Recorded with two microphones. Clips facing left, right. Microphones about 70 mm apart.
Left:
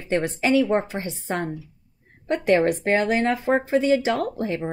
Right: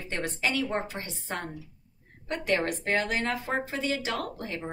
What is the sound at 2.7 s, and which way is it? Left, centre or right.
A woman's voice, left.